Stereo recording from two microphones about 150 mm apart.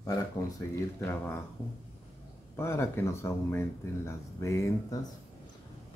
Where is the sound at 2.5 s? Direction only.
15° left (ahead or behind).